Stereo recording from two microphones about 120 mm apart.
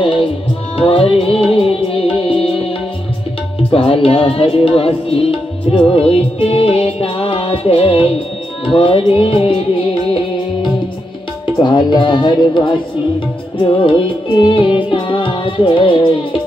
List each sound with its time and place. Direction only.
0.0 s music: 45° left (ahead or behind)
3.7 s music: 50° left (ahead or behind)
11.4 s speech: 40° left (ahead or behind)
13.7 s music: 45° left (ahead or behind)